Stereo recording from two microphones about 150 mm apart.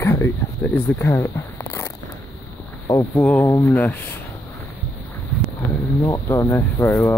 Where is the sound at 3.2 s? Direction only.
5° left (ahead or behind).